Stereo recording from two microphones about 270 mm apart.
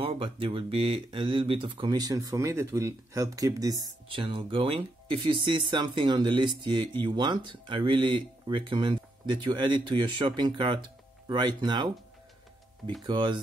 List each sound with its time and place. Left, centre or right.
0.0 s speech: centre
13.0 s speech: centre